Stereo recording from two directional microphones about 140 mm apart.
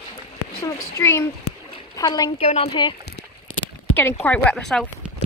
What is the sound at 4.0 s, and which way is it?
Speech, 10° left (ahead or behind).